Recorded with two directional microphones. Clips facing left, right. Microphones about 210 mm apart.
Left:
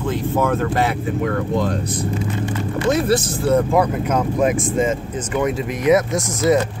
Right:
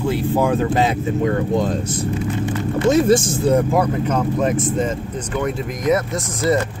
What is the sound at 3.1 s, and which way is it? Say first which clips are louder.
Speech: right 3 dB; 50° right (ahead or behind).